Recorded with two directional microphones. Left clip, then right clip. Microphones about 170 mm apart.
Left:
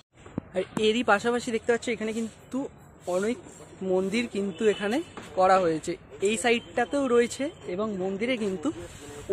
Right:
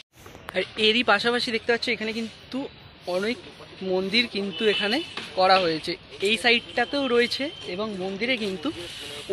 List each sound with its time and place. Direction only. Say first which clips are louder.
0.6 s speech: right 4 dB; 10° left (ahead or behind)